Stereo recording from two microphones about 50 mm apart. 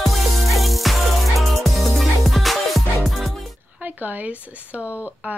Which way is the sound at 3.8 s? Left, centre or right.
Right.